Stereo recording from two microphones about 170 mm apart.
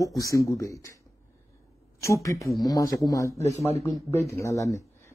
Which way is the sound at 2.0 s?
20° left (ahead or behind).